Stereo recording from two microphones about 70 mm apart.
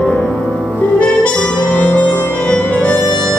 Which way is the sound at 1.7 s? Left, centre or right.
Left.